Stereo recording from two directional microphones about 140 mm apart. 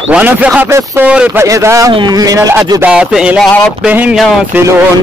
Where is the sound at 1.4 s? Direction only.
20° right (ahead or behind).